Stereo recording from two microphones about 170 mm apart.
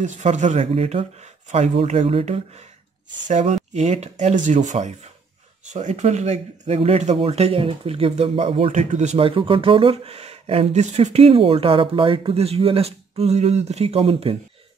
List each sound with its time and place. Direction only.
0.0 s speech: 45° right (ahead or behind)